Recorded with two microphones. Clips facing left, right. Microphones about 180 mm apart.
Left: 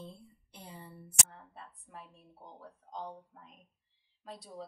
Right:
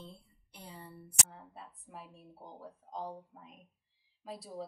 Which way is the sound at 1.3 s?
5° right (ahead or behind).